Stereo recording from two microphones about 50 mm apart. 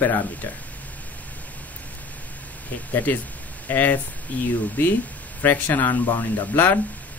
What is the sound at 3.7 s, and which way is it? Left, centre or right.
Speech, left.